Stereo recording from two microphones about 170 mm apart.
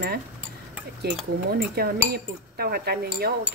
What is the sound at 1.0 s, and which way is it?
Speech, 65° right (ahead or behind).